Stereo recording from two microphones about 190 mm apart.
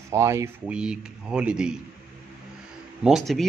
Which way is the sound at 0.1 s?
15° right (ahead or behind).